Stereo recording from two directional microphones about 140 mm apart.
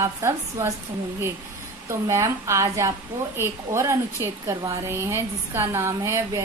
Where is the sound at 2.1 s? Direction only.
20° right (ahead or behind).